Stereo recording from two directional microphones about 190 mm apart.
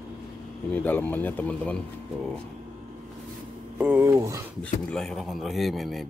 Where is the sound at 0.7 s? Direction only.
10° left (ahead or behind).